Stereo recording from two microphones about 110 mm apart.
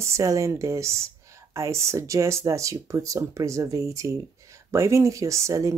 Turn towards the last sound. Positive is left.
turn(degrees=-25)  # may be behind; listen again after turning